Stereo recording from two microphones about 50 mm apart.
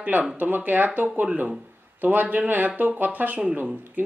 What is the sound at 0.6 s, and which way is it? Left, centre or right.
Speech, right.